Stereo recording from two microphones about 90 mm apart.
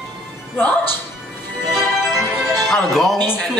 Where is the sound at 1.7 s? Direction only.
5° right (ahead or behind).